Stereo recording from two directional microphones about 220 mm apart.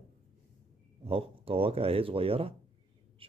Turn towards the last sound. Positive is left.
turn(degrees=-25)  # may be behind; listen again after turning